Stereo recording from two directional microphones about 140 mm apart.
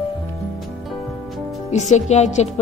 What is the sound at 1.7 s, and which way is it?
Speech, 55° left (ahead or behind).